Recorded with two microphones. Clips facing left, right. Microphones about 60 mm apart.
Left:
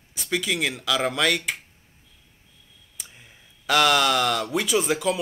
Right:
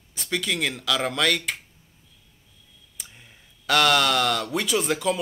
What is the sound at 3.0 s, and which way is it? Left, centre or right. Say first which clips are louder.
Speech: even; centre.